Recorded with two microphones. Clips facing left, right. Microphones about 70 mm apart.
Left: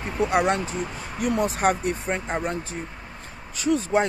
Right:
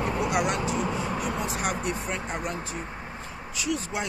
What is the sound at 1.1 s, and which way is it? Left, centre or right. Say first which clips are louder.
Speech: left 6 dB; left.